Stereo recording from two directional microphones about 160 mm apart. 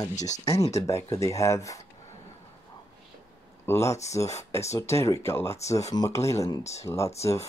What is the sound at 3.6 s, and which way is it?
Speech, 15° left (ahead or behind).